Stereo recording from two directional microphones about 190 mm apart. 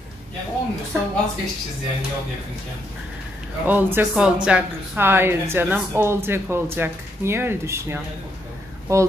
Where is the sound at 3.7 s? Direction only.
10° right (ahead or behind).